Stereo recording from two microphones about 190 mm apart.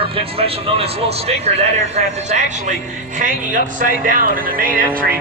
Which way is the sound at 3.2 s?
45° right (ahead or behind).